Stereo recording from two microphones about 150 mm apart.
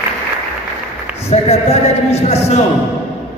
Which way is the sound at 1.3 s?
45° left (ahead or behind).